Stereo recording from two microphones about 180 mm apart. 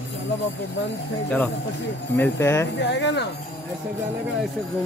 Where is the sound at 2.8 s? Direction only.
75° left (ahead or behind).